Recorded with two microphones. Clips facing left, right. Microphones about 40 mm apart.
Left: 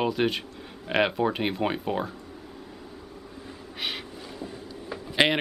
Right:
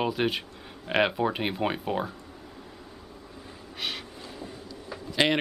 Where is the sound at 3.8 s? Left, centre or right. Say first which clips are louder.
Left 1 dB; centre.